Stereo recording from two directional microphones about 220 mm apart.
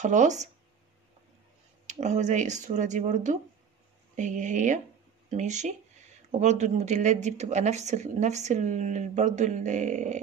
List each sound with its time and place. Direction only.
0.0 s speech: 35° right (ahead or behind)
1.9 s speech: 30° right (ahead or behind)